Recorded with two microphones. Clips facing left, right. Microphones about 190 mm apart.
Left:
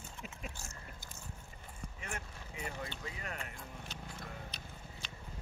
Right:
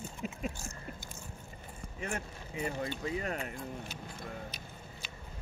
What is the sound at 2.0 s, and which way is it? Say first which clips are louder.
Speech: right 8 dB; 35° right (ahead or behind).